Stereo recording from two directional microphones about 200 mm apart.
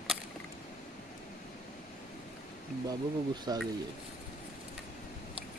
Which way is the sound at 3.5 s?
20° right (ahead or behind).